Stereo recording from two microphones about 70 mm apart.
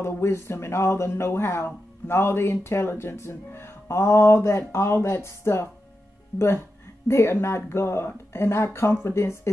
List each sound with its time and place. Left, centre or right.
0.0 s speech: left